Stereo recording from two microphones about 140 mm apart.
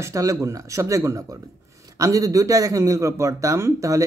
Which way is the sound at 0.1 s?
25° right (ahead or behind).